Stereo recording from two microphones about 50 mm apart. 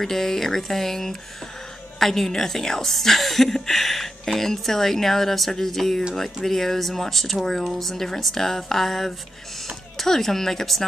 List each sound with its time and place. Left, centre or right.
0.0 s a woman's voice: centre